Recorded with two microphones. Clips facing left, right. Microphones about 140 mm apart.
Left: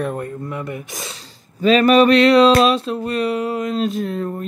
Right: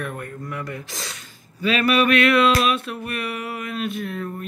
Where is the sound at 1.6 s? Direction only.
35° left (ahead or behind).